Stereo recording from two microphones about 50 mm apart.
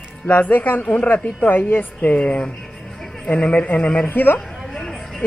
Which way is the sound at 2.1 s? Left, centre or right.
Left.